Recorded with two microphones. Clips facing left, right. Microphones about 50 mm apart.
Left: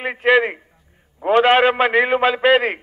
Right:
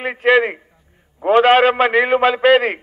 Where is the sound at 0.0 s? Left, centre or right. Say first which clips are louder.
Right 1 dB; centre.